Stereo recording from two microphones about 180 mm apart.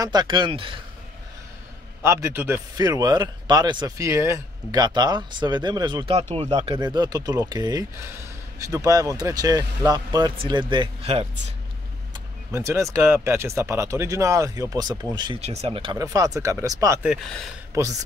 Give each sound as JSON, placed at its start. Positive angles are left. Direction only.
{"t": 0.0, "sound": "speech", "side_deg": -25}
{"t": 2.0, "sound": "speech", "side_deg": -15}
{"t": 12.4, "sound": "speech", "side_deg": -15}
{"t": 17.0, "sound": "speech", "side_deg": 0}
{"t": 17.7, "sound": "speech", "side_deg": -20}